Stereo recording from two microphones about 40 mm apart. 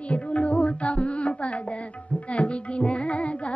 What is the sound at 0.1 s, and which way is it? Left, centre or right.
Music, left.